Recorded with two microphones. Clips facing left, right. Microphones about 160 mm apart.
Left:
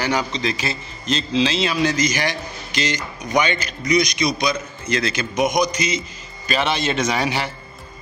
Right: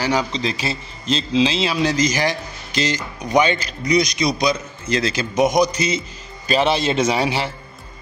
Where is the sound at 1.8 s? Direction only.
35° right (ahead or behind).